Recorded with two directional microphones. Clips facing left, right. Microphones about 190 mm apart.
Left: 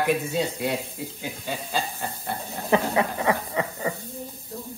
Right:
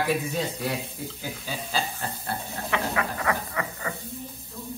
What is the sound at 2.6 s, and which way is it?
Speech, 35° left (ahead or behind).